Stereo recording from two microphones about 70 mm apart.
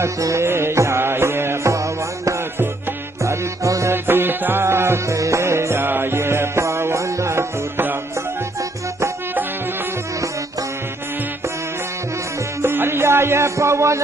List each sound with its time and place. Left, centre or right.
0.0 s music: right
3.9 s music: right
12.6 s music: right